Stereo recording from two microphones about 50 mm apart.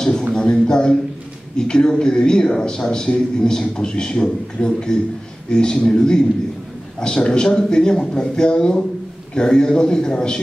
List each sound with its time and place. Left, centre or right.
0.3 s speech: centre